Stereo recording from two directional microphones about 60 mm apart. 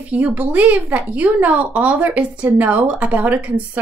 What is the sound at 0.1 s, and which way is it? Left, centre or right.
Speech, right.